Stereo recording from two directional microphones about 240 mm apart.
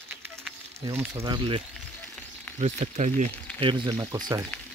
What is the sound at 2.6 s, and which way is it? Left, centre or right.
Speech, right.